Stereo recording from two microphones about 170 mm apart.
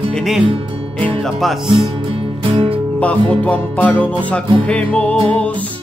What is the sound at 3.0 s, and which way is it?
Music, 10° left (ahead or behind).